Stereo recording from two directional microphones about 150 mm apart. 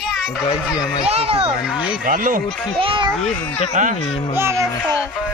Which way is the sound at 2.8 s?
35° right (ahead or behind).